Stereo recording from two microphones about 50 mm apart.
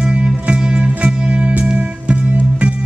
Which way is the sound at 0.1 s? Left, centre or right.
Centre.